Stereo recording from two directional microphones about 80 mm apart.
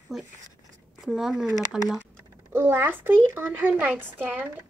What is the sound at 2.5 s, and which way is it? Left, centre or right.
A child's voice, right.